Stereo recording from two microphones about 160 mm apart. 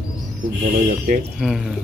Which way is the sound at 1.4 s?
5° right (ahead or behind).